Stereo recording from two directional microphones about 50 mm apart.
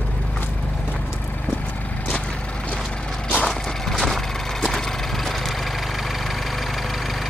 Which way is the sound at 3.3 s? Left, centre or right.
Centre.